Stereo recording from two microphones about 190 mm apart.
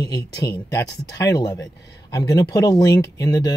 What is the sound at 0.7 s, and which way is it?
Speech, 15° left (ahead or behind).